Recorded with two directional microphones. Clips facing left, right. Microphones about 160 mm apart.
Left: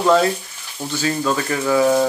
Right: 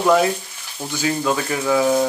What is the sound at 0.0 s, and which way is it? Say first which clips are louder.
Speech: left 1 dB; 10° right (ahead or behind).